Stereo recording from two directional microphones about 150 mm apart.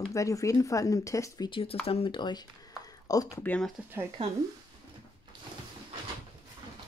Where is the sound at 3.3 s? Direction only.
10° left (ahead or behind).